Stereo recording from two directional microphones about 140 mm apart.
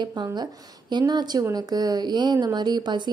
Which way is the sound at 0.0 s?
35° right (ahead or behind).